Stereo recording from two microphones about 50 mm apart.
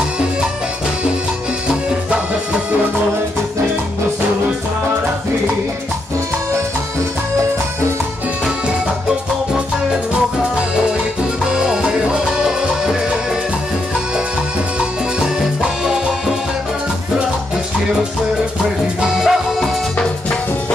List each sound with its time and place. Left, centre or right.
11.5 s music: centre
15.1 s music: centre
18.9 s music: centre